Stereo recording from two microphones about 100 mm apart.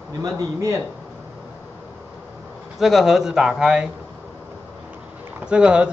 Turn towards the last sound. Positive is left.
turn(degrees=-10)  # may be behind; listen again after turning